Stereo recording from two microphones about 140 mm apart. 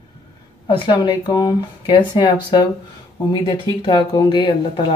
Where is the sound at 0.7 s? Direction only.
35° left (ahead or behind).